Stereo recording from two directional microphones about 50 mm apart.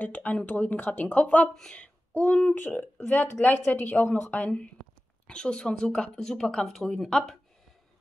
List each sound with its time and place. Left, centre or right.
0.0 s speech: left
1.5 s speech: centre
1.8 s child singing: left
2.5 s speech: left
3.5 s a woman's voice: left
3.8 s speech: left
5.2 s speech: centre